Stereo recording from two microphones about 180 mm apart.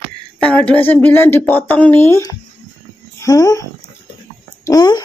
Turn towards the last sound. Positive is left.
turn(degrees=20)  # may be behind; listen again after turning